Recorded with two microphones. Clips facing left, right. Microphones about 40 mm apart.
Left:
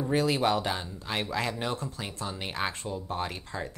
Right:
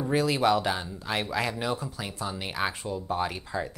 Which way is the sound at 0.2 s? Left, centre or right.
Centre.